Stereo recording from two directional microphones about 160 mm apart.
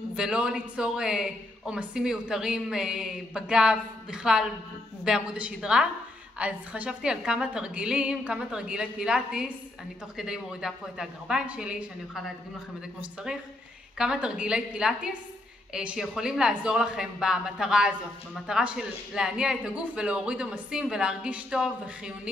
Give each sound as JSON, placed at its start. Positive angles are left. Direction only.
{"t": 0.1, "sound": "speech", "side_deg": -5}